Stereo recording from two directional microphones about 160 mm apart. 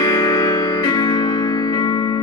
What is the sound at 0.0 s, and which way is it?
Music, 25° left (ahead or behind).